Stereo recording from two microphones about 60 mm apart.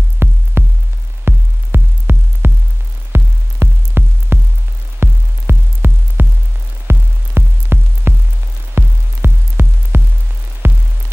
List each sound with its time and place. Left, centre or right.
0.2 s music: right